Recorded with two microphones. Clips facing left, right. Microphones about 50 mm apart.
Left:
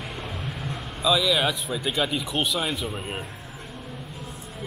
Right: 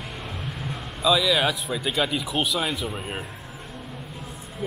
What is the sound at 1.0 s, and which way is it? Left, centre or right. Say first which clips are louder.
Speech: right 1 dB; centre.